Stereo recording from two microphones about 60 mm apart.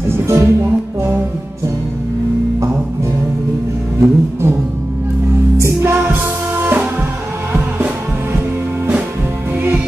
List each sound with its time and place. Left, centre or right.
0.2 s speech: right
4.0 s music: right
5.6 s music: right
6.5 s music: right